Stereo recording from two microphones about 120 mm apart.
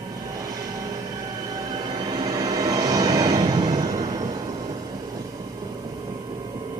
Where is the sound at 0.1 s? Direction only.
30° right (ahead or behind).